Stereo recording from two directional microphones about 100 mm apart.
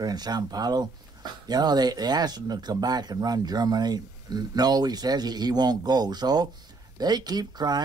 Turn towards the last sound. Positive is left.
turn(degrees=-45)  # may be behind; listen again after turning